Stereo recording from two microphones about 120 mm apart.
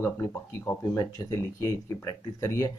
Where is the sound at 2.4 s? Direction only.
25° left (ahead or behind).